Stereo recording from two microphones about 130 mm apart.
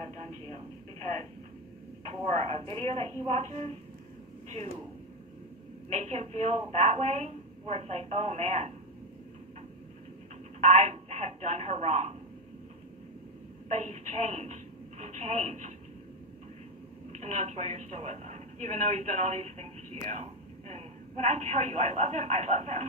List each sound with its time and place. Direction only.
2.4 s speech: 50° right (ahead or behind)
5.9 s a woman's voice: 60° right (ahead or behind)
10.6 s speech: 60° right (ahead or behind)
13.7 s a woman's voice: 60° right (ahead or behind)
17.1 s a woman's voice: 60° right (ahead or behind)